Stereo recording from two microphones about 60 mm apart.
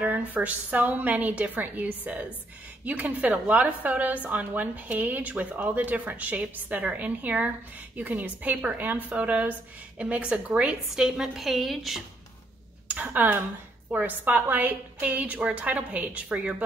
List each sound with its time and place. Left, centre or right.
0.0 s a woman's voice: right; by 12.0 s centre
12.8 s a woman's voice: right